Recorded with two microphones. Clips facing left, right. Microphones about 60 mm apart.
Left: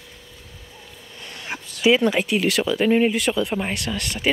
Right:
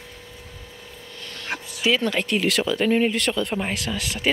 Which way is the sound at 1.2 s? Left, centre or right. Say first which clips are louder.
Right 1 dB; centre.